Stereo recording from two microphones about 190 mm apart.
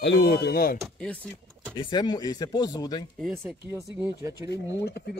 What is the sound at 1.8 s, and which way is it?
Speech, 25° left (ahead or behind).